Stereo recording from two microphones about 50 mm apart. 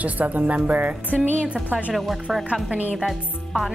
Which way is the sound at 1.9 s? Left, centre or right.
Centre.